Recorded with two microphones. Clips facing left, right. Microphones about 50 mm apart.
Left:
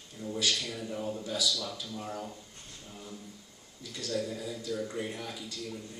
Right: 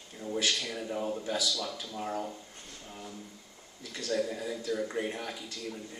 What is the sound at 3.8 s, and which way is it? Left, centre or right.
Speech, right.